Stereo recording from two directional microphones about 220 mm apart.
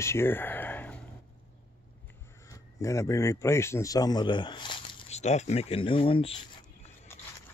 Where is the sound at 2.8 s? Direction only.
15° left (ahead or behind).